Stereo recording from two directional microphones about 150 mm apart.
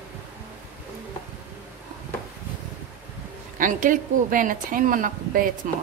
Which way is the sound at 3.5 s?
60° right (ahead or behind).